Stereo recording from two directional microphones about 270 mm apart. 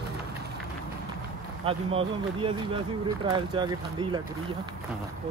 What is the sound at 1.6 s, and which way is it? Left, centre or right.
Speech, right.